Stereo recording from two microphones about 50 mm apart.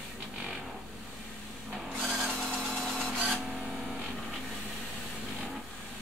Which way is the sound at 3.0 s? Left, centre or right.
Right.